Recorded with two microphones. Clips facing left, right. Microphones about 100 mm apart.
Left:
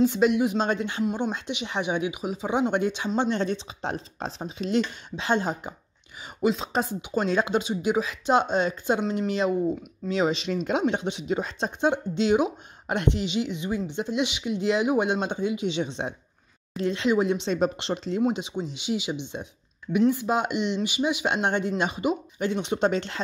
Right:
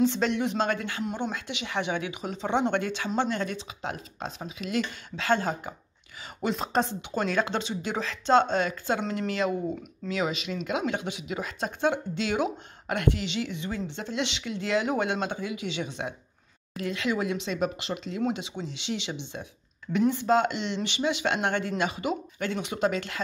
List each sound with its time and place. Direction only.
0.0 s speech: 10° left (ahead or behind)
0.7 s speech: 20° left (ahead or behind)
2.8 s speech: 20° left (ahead or behind)
6.4 s speech: centre (ahead or behind); by 18.2 s 30° left (ahead or behind)
18.2 s speech: 15° left (ahead or behind)